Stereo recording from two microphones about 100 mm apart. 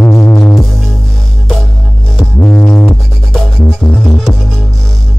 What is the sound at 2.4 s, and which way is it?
Music, 20° left (ahead or behind).